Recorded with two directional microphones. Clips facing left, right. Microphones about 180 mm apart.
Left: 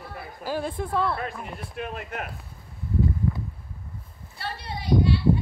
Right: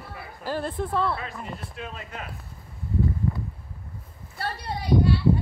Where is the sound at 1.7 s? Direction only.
55° left (ahead or behind).